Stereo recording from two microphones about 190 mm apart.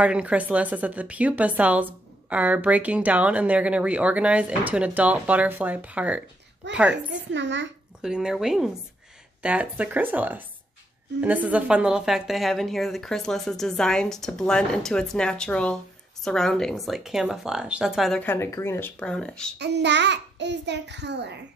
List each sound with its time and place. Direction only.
0.0 s a woman's voice: 5° right (ahead or behind)
6.6 s a child's voice: 70° right (ahead or behind)
8.0 s a woman's voice: 5° right (ahead or behind)
19.6 s a child's voice: 65° right (ahead or behind)